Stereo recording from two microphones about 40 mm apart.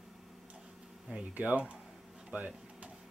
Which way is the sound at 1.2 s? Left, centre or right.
Right.